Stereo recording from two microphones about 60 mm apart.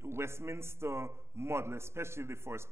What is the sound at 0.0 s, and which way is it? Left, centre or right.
A man's voice, right.